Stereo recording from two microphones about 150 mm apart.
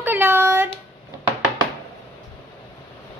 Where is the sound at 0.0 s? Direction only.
15° right (ahead or behind).